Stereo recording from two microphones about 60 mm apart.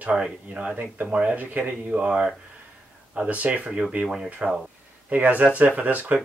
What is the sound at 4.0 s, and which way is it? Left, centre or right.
Speech, centre.